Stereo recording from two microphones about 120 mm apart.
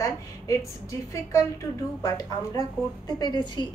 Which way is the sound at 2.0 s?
35° left (ahead or behind).